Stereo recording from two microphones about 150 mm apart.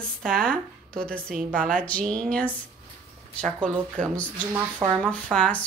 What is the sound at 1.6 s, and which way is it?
Speech, 10° left (ahead or behind).